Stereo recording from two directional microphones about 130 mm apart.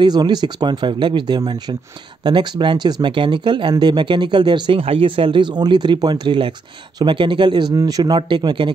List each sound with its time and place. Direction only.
0.0 s speech: 35° right (ahead or behind)